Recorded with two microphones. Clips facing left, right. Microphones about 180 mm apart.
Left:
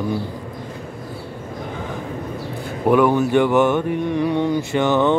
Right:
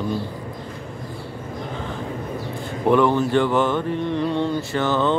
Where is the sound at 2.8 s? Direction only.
10° left (ahead or behind).